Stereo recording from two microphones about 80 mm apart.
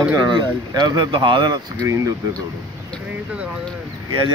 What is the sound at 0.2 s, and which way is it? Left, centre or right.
Speech, right.